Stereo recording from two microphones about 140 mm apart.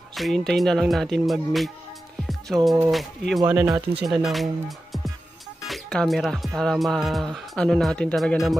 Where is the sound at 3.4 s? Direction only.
15° right (ahead or behind).